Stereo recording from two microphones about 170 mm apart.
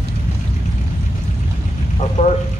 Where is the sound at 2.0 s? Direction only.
40° left (ahead or behind).